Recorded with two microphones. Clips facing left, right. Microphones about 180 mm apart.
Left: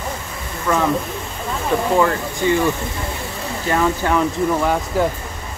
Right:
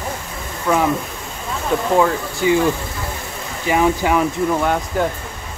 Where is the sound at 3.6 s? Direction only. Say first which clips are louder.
Right 2 dB; 10° right (ahead or behind).